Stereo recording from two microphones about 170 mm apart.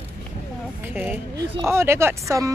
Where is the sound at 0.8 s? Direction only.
10° right (ahead or behind).